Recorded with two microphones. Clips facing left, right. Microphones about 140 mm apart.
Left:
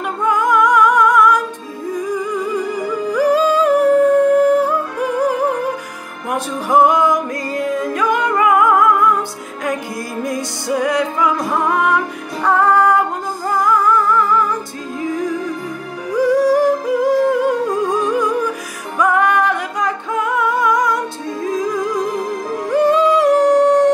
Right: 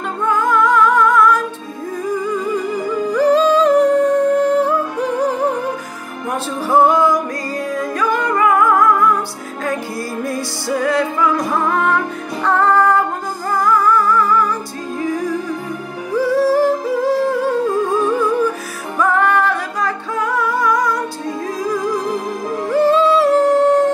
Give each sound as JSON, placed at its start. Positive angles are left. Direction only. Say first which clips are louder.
{"t": 0.2, "sound": "music", "louder": "left 1 dB", "side_deg": 15}
{"t": 3.1, "sound": "humming", "louder": "right 1 dB", "side_deg": 10}
{"t": 6.3, "sound": "music", "louder": "left 1 dB", "side_deg": 15}
{"t": 10.2, "sound": "music", "louder": "even", "side_deg": 20}
{"t": 16.2, "sound": "music", "louder": "left 1 dB", "side_deg": 15}